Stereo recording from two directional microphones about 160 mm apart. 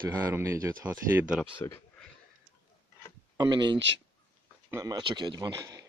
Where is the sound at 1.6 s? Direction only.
20° left (ahead or behind).